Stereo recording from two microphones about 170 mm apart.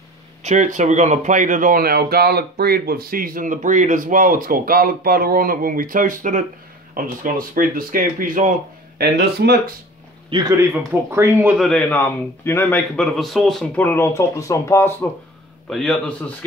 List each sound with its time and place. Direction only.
0.4 s speech: 45° right (ahead or behind)
9.0 s speech: 75° right (ahead or behind)
10.3 s speech: 20° right (ahead or behind); by 15.0 s 15° left (ahead or behind)
15.7 s speech: centre (ahead or behind)